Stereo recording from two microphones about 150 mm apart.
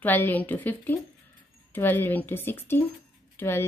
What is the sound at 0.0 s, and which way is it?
Speech, 10° left (ahead or behind).